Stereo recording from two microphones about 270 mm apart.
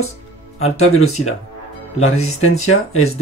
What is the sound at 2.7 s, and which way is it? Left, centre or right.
Speech, left.